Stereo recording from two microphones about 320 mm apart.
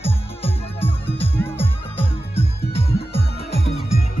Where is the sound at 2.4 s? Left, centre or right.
Centre.